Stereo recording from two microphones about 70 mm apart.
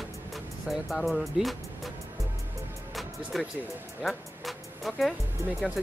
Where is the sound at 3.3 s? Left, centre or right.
Centre.